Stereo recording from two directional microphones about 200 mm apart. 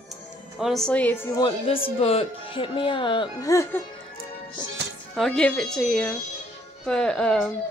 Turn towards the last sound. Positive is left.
turn(degrees=5)  # may be behind; listen again after turning